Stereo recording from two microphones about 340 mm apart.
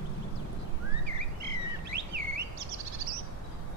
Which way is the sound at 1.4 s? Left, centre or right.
Right.